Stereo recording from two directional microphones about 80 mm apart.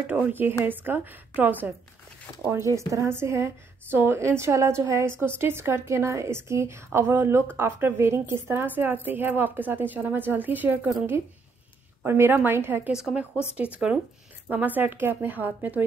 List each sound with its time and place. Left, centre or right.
0.0 s a woman's voice: right
2.5 s a woman's voice: right
12.0 s a woman's voice: right
12.9 s a woman's voice: centre